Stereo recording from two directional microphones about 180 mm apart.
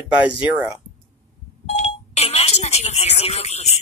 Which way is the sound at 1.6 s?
35° left (ahead or behind).